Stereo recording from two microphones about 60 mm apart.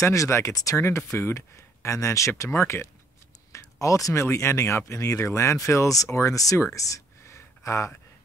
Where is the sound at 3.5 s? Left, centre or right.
Left.